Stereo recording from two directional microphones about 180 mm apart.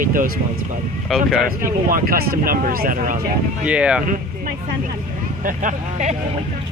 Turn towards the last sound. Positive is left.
turn(degrees=-45)  # may be behind; listen again after turning